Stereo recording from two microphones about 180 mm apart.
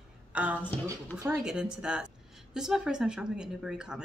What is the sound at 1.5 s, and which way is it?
Speech, 5° right (ahead or behind).